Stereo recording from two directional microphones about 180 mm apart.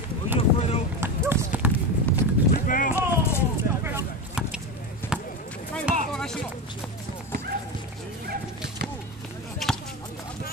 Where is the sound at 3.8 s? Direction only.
10° right (ahead or behind).